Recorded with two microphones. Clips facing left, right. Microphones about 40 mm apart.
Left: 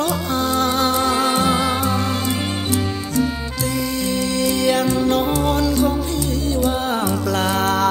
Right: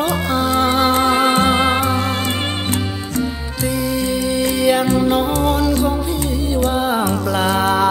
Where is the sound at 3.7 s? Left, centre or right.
Centre.